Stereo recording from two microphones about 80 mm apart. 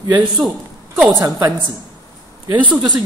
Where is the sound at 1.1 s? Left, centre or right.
Right.